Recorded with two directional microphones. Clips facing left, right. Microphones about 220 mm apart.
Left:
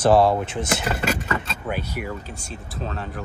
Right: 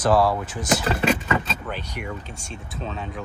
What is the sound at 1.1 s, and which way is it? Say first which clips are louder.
Speech: right 3 dB; 10° left (ahead or behind).